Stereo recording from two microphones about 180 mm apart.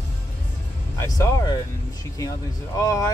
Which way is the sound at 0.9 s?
15° left (ahead or behind).